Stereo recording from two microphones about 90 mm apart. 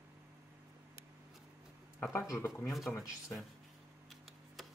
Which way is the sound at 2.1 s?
40° left (ahead or behind).